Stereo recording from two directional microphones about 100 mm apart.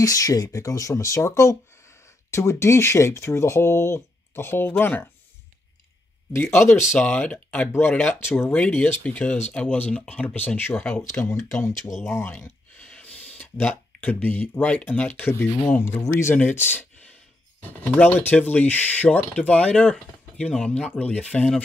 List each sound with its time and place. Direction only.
0.0 s speech: 35° left (ahead or behind)
6.3 s speech: 25° left (ahead or behind)
7.0 s speech: 10° left (ahead or behind)
8.2 s speech: 25° left (ahead or behind)
8.5 s speech: 10° left (ahead or behind)
12.9 s speech: 10° left (ahead or behind)